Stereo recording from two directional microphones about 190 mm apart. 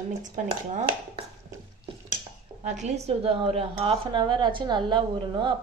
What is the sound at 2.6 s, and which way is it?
Speech, 35° right (ahead or behind).